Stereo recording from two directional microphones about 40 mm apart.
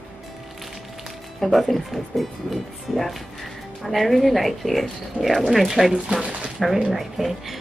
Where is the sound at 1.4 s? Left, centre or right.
Centre.